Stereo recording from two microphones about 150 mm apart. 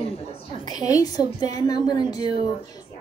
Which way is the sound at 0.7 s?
25° left (ahead or behind).